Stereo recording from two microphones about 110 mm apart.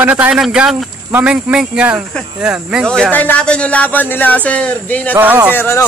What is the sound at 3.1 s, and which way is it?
Speech, 15° left (ahead or behind).